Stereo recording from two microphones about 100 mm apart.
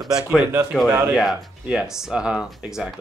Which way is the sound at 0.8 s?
25° right (ahead or behind).